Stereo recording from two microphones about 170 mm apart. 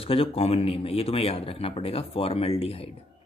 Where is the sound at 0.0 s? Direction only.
35° left (ahead or behind).